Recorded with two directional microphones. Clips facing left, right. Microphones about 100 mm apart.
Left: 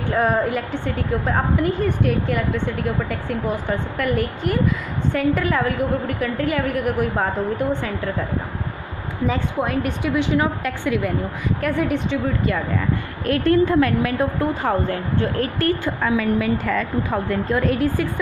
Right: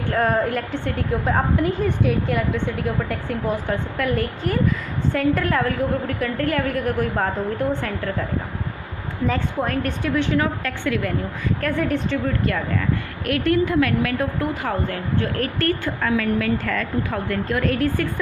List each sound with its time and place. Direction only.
0.1 s a woman's voice: 5° left (ahead or behind)
9.3 s a woman's voice: 5° left (ahead or behind)
11.6 s a woman's voice: 5° left (ahead or behind)
13.3 s a woman's voice: 30° left (ahead or behind); by 18.2 s 15° left (ahead or behind)